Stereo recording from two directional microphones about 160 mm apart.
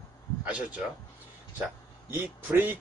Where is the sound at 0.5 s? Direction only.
5° right (ahead or behind).